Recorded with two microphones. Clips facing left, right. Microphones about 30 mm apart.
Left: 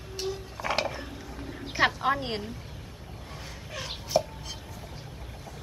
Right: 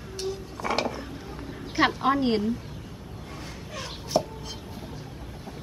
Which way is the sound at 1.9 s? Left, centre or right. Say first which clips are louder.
Right 5 dB; centre.